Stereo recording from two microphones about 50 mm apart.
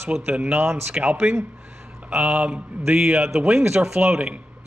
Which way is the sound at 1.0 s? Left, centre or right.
Right.